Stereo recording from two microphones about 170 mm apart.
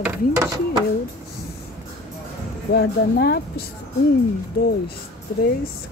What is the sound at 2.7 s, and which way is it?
Speech, 70° left (ahead or behind).